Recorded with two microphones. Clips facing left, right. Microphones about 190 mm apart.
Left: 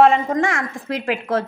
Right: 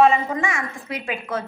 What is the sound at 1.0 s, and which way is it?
Speech, 80° left.